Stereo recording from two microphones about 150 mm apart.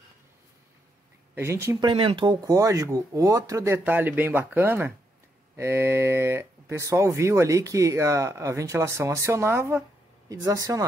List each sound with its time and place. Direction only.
1.3 s speech: 15° right (ahead or behind)
1.9 s speech: 35° right (ahead or behind)